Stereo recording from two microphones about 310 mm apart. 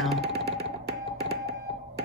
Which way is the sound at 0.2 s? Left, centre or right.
Right.